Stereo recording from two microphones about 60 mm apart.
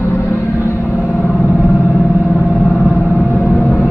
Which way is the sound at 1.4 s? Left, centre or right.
Left.